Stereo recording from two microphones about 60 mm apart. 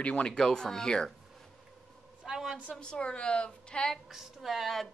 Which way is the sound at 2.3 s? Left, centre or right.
Centre.